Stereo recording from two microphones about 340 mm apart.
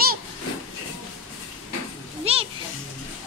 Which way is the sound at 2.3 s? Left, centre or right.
Centre.